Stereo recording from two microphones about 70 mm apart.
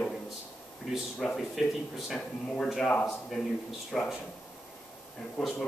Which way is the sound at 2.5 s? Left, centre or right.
Centre.